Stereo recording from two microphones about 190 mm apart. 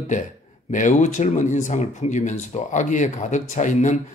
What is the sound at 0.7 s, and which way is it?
Speech, 40° left (ahead or behind).